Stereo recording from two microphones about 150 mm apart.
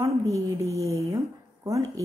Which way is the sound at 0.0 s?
20° right (ahead or behind).